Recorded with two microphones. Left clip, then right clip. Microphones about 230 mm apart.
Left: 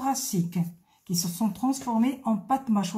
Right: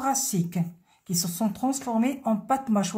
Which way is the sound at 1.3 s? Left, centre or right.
Right.